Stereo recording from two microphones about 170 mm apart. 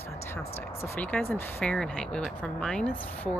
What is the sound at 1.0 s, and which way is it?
A woman's voice, 10° left (ahead or behind).